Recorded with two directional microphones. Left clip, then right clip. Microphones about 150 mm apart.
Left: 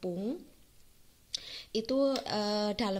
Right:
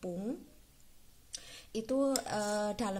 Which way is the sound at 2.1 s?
25° left (ahead or behind).